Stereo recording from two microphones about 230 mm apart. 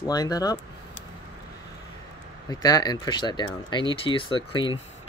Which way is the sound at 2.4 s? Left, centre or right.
Centre.